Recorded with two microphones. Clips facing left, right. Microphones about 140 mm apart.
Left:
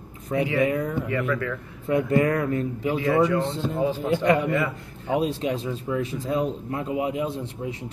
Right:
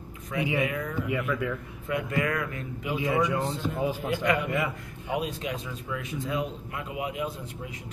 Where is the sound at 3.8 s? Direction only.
10° right (ahead or behind).